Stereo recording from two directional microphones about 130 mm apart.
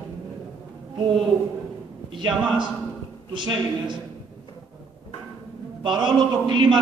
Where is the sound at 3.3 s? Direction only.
35° right (ahead or behind).